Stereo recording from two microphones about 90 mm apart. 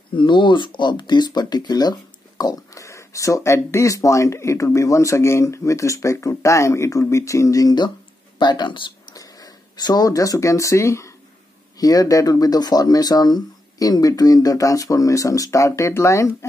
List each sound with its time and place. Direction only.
0.1 s speech: 65° left (ahead or behind); by 7.7 s 40° left (ahead or behind)
8.4 s speech: 55° left (ahead or behind)
9.1 s speech: 40° left (ahead or behind)